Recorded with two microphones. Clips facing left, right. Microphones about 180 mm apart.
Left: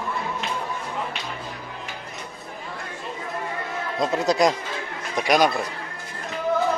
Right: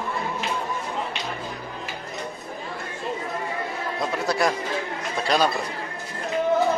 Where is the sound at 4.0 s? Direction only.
20° left (ahead or behind).